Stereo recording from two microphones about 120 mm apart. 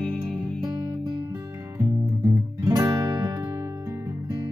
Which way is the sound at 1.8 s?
30° right (ahead or behind).